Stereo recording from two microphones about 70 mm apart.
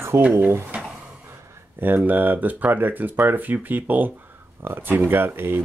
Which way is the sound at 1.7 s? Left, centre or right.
Right.